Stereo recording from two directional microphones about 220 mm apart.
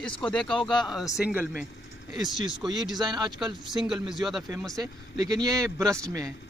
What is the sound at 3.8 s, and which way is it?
Speech, centre (ahead or behind).